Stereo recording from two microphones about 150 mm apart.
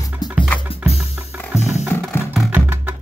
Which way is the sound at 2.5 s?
15° right (ahead or behind).